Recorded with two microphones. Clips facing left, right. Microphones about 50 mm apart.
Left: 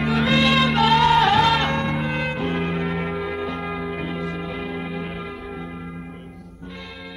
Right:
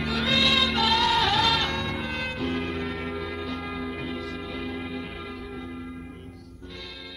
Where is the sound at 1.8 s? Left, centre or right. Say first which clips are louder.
Left 6 dB; centre.